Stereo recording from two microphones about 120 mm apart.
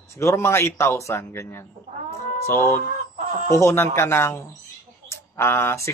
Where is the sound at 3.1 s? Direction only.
85° right.